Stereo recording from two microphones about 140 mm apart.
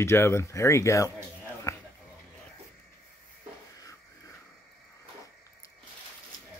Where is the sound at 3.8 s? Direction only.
25° left (ahead or behind).